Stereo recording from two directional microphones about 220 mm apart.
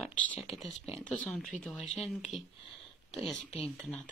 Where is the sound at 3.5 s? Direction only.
25° left (ahead or behind).